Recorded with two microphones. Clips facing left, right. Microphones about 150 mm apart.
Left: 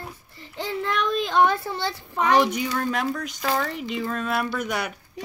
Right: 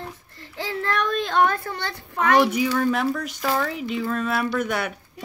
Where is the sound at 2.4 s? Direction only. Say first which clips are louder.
Right 3 dB; 5° right (ahead or behind).